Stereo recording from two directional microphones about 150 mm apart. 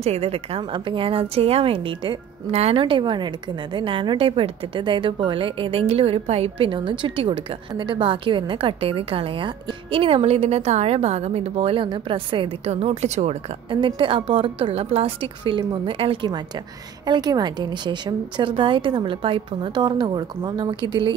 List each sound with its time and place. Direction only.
0.0 s a woman's voice: 40° right (ahead or behind)
13.7 s a woman's voice: 35° right (ahead or behind)